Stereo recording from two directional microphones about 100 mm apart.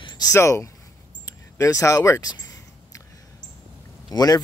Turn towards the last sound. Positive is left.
turn(degrees=40)  # may be behind; listen again after turning